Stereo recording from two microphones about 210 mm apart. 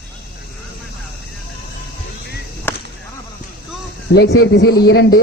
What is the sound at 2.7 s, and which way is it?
Chop, 10° left (ahead or behind).